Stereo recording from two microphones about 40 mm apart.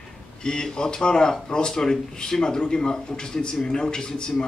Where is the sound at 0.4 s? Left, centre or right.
Centre.